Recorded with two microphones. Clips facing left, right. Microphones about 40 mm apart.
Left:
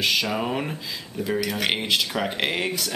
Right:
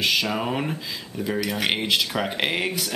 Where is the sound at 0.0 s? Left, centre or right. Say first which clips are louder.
Even; centre.